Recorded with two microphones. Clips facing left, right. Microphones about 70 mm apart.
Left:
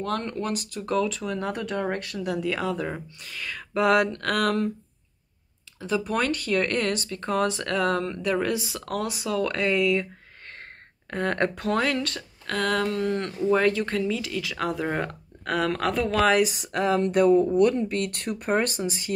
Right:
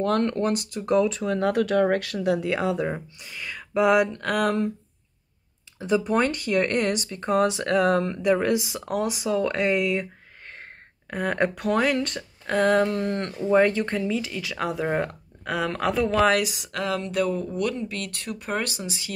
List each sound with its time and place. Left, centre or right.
0.0 s speech: right
0.7 s speech: right
1.3 s speech: right
2.1 s speech: right
2.9 s speech: centre
4.1 s a sound: centre
5.8 s speech: right
11.1 s speech: centre
16.3 s speech: left